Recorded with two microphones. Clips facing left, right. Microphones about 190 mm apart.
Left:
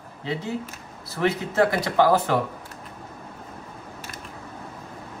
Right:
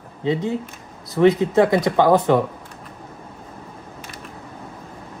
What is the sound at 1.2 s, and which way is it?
Speech, 20° right (ahead or behind).